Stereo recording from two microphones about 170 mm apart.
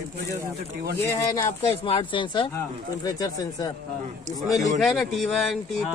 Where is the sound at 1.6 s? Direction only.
35° left (ahead or behind).